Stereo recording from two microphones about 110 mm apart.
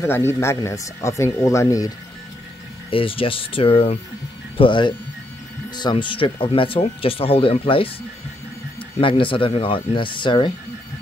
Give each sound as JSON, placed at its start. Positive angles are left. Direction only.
{"t": 0.0, "sound": "speech", "side_deg": 20}
{"t": 2.9, "sound": "speech", "side_deg": 55}
{"t": 4.6, "sound": "speech", "side_deg": 50}
{"t": 9.0, "sound": "speech", "side_deg": 50}